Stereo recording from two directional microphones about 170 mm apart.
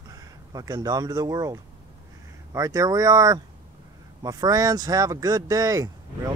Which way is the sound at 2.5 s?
20° right (ahead or behind).